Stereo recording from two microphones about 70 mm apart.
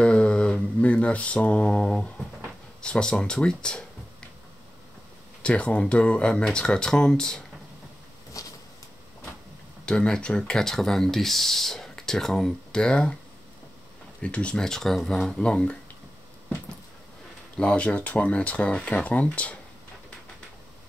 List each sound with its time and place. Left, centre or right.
0.0 s mantra: centre
0.7 s speech: centre
5.4 s speech: centre
8.3 s a sound: left
9.8 s speech: centre
14.2 s speech: centre
17.6 s speech: centre